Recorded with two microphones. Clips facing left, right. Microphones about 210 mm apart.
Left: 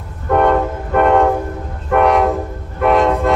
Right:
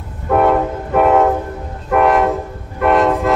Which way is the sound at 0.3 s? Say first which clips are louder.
Even; 5° right (ahead or behind).